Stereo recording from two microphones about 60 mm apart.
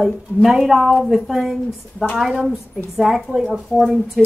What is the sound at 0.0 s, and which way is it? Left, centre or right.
A woman's voice, centre.